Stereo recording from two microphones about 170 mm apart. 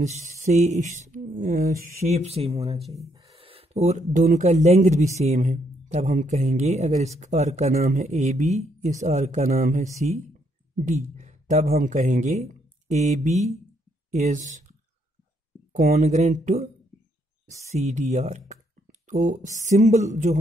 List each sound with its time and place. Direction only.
0.0 s speech: 40° right (ahead or behind)
2.9 s speech: 20° right (ahead or behind)
3.2 s speech: 35° right (ahead or behind)
15.7 s speech: 45° right (ahead or behind)